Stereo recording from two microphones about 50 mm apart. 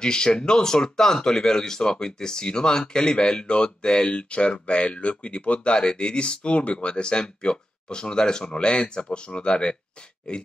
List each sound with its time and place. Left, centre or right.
0.0 s speech: centre